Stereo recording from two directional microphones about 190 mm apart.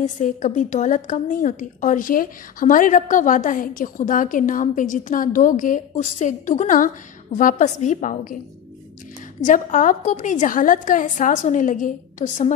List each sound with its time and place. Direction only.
0.0 s a woman's voice: 40° left (ahead or behind)
9.4 s a woman's voice: 40° left (ahead or behind)